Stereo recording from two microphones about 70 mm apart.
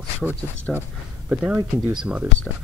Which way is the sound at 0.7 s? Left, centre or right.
Left.